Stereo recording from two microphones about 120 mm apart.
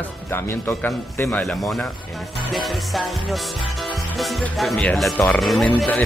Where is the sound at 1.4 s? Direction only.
Centre (ahead or behind).